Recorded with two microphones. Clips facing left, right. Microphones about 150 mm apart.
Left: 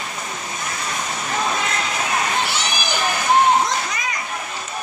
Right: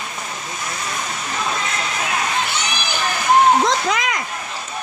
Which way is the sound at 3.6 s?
90° right.